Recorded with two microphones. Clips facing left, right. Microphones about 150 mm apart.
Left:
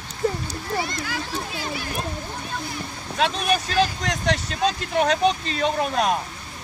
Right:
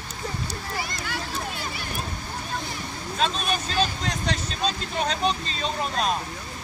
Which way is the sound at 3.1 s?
70° left (ahead or behind).